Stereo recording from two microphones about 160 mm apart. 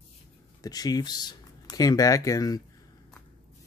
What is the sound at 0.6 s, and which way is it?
Speech, 25° left (ahead or behind).